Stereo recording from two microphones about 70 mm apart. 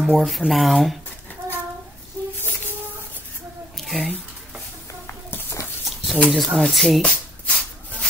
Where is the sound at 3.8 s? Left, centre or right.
Centre.